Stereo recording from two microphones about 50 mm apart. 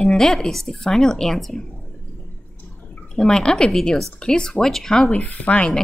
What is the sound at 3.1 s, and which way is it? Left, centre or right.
Speech, centre.